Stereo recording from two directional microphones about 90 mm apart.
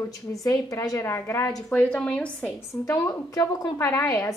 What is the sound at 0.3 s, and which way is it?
Speech, 40° left (ahead or behind).